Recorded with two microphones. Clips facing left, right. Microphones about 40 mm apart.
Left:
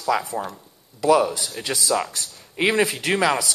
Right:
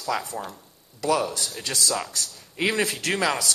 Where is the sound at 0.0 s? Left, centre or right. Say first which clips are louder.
Left 5 dB; centre.